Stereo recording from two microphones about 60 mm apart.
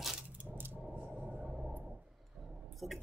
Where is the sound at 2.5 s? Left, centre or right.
Centre.